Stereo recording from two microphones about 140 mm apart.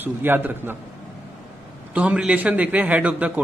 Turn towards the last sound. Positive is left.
turn(degrees=-10)  # may be behind; listen again after turning